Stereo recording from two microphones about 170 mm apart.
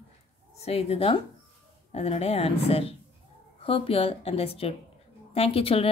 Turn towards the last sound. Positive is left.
turn(degrees=35)  # may be behind; listen again after turning